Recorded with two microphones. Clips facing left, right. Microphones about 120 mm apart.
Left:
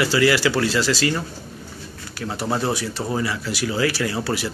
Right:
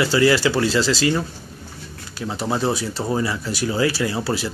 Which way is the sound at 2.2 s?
20° right (ahead or behind).